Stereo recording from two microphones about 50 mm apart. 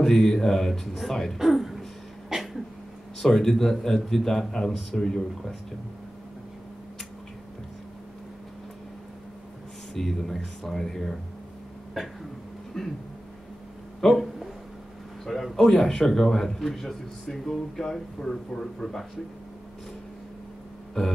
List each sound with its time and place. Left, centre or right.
0.0 s speech: centre
1.4 s a sound: centre
3.2 s a man's voice: centre
9.9 s speech: centre
12.7 s a man's voice: centre
14.0 s a man's voice: centre
21.0 s a man's voice: centre